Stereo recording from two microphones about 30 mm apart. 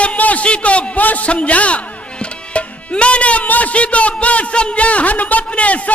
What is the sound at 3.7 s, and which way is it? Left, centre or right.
A man's voice, left.